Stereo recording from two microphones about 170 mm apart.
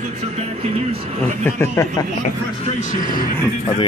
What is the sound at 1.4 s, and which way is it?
Speech, 15° left (ahead or behind).